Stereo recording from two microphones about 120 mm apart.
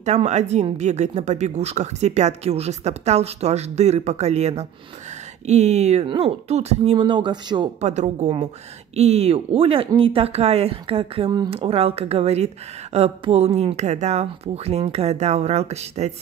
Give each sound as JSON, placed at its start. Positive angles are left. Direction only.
{"t": 0.0, "sound": "speech", "side_deg": -70}
{"t": 6.0, "sound": "speech", "side_deg": -55}
{"t": 7.8, "sound": "speech", "side_deg": -75}
{"t": 8.9, "sound": "speech", "side_deg": -60}